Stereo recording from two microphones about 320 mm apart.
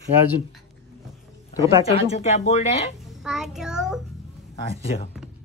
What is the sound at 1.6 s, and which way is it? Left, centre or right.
Speech, centre.